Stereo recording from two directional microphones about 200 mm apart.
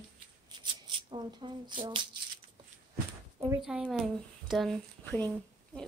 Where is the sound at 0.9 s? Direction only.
25° right (ahead or behind).